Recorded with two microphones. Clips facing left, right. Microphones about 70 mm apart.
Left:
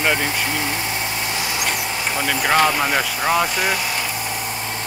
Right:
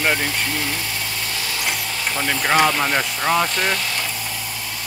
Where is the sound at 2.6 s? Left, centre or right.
Centre.